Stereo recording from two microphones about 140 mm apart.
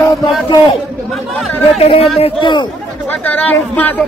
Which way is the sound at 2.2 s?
35° left (ahead or behind).